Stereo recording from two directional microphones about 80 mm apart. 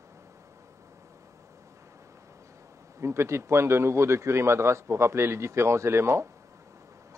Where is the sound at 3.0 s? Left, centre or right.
Right.